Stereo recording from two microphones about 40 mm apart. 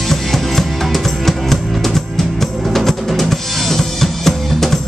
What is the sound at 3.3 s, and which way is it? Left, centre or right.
Music, centre.